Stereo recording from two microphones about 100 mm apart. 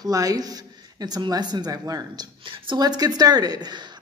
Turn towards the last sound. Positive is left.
turn(degrees=-40)  # may be behind; listen again after turning